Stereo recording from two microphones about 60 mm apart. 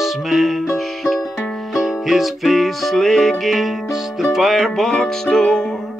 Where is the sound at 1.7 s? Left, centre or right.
Centre.